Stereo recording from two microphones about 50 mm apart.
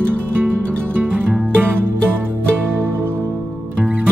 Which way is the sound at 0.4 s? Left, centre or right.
Right.